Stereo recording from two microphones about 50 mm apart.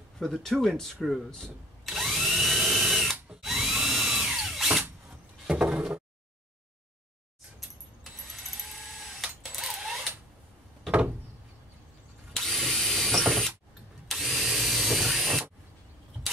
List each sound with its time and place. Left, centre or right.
0.2 s speech: centre
1.9 s drill: centre
5.5 s a sound: centre
9.0 s printer: centre
10.9 s door: right
12.4 s drill: centre